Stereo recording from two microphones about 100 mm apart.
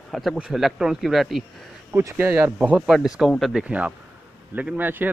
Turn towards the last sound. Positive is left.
turn(degrees=-20)  # may be behind; listen again after turning